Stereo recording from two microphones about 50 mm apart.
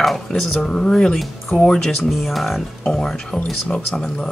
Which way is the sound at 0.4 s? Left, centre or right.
Centre.